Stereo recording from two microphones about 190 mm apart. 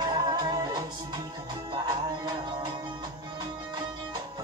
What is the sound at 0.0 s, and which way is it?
Music, 20° right (ahead or behind).